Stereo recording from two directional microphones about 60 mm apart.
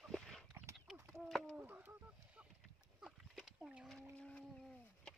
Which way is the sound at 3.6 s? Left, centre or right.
Centre.